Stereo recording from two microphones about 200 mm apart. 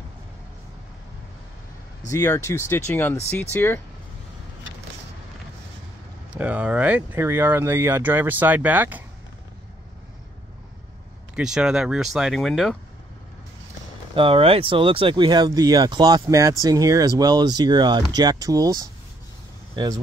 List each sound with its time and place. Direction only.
2.0 s speech: 15° left (ahead or behind)
6.3 s speech: 5° right (ahead or behind)
11.3 s speech: 5° right (ahead or behind)
14.1 s speech: 25° right (ahead or behind)